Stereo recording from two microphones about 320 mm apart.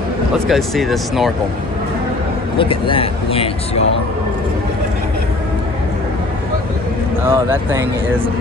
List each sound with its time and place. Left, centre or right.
0.5 s speech: centre
2.6 s speech: centre
7.2 s speech: centre